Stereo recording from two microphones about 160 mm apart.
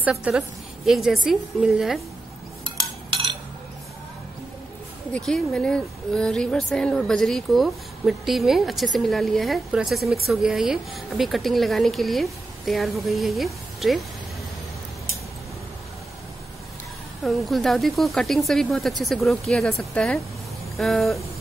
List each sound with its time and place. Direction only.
0.0 s a woman's voice: 5° right (ahead or behind)
2.6 s cutlery: 30° right (ahead or behind)
5.1 s a woman's voice: 5° left (ahead or behind)
17.2 s a woman's voice: centre (ahead or behind)